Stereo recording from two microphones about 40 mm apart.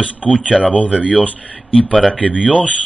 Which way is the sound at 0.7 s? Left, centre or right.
Left.